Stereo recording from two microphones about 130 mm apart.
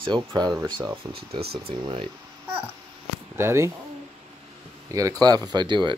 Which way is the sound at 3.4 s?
20° right (ahead or behind).